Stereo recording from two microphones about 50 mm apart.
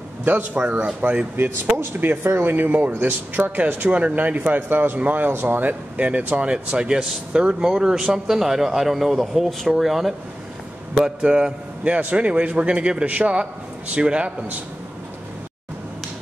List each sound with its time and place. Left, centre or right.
0.2 s a man's voice: right; by 10.1 s centre
11.0 s a man's voice: centre